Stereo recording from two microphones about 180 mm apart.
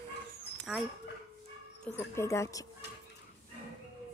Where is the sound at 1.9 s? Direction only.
15° left (ahead or behind).